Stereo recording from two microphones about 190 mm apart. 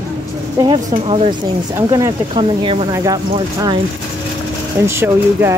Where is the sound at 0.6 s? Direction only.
30° right (ahead or behind).